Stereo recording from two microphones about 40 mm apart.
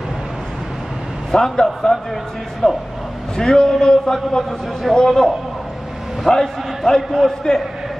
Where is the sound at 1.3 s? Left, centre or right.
Centre.